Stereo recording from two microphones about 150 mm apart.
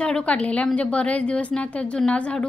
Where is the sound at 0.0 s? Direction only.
5° left (ahead or behind).